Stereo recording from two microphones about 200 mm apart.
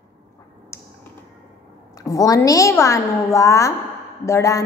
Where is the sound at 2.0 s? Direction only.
15° left (ahead or behind).